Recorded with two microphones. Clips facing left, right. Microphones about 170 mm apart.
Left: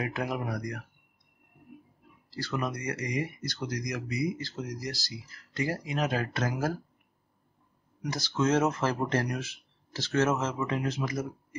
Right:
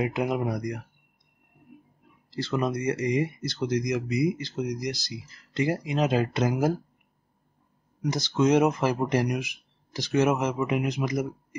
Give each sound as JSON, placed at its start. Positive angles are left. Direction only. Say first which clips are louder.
{"t": 0.0, "sound": "speech", "louder": "right 6 dB", "side_deg": -20}
{"t": 2.3, "sound": "speech", "louder": "right 6 dB", "side_deg": -25}
{"t": 8.0, "sound": "speech", "louder": "right 5 dB", "side_deg": -20}